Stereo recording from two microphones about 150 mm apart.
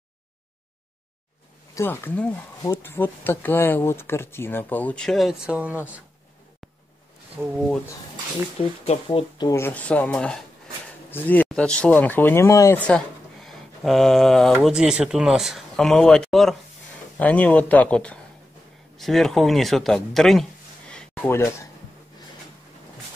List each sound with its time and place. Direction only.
1.8 s speech: 15° left (ahead or behind); by 5.8 s 10° right (ahead or behind)
8.5 s speech: 40° left (ahead or behind)
9.4 s speech: 20° left (ahead or behind)
12.8 s speech: 5° left (ahead or behind)
20.9 s a sound: 10° left (ahead or behind)